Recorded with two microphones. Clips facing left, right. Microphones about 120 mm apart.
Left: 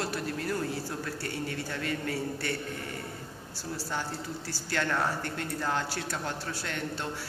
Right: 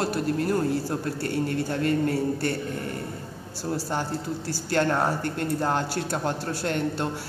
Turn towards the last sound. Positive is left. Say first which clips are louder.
# right 8 dB
turn(degrees=-50)  # may be behind; listen again after turning